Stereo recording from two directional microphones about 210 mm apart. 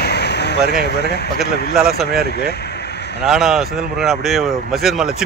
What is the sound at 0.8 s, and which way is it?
Speech, 50° left (ahead or behind).